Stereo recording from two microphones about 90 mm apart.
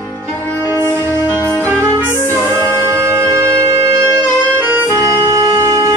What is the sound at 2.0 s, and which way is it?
Music, 30° right (ahead or behind).